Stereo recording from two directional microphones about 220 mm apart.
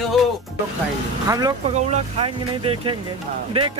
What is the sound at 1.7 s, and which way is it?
Speech, 30° right (ahead or behind).